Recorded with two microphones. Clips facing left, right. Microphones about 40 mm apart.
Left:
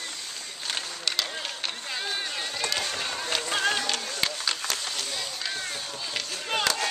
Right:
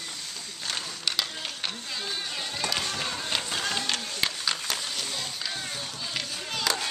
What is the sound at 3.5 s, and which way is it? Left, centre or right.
Music, left.